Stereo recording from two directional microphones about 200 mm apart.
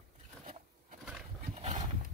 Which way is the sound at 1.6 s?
35° right (ahead or behind).